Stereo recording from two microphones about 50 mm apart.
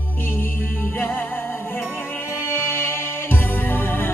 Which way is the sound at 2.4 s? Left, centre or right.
Left.